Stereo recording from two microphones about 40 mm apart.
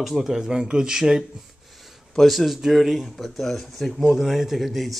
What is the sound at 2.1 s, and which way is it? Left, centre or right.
A man's voice, centre.